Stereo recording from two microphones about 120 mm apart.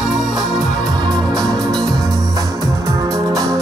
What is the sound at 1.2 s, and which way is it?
Music, 5° left (ahead or behind).